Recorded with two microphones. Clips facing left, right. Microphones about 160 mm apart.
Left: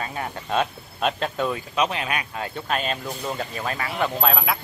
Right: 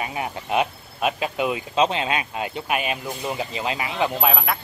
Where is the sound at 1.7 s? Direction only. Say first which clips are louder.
Right 3 dB; 25° right (ahead or behind).